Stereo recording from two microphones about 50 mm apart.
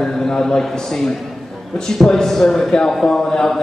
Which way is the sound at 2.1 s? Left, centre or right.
Centre.